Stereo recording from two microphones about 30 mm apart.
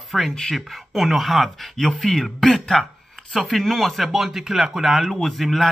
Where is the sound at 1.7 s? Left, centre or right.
Centre.